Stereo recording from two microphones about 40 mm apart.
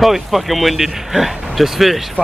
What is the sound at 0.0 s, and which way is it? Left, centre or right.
Speech, centre.